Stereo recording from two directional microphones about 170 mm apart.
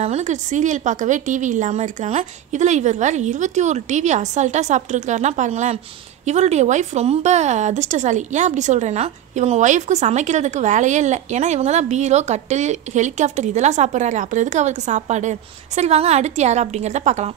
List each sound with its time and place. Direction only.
0.0 s a woman's voice: 40° right (ahead or behind)